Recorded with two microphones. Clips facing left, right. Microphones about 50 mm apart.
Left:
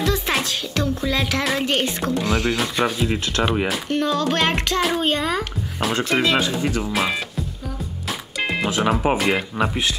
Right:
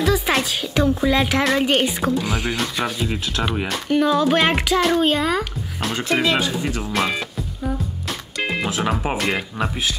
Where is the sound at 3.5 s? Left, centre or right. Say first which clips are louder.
Left 2 dB; centre.